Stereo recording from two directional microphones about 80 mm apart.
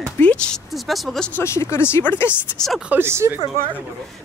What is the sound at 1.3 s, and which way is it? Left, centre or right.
Speech, left.